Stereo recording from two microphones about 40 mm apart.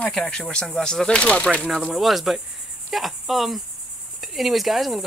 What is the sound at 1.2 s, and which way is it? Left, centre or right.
Speech, left.